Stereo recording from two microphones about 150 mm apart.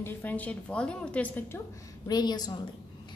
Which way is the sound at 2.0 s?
25° left (ahead or behind).